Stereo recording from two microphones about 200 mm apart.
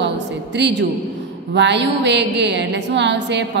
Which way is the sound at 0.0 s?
60° right (ahead or behind).